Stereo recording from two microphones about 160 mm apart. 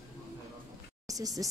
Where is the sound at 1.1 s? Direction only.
20° right (ahead or behind).